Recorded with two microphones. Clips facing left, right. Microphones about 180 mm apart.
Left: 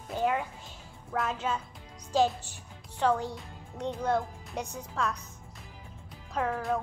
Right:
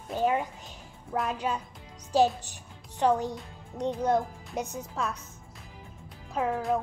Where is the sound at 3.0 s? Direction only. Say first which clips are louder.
Right 2 dB; 15° right (ahead or behind).